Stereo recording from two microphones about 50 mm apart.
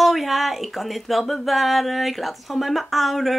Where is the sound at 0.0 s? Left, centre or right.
Centre.